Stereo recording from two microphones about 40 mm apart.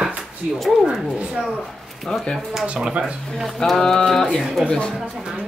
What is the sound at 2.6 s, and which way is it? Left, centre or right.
Speech, right.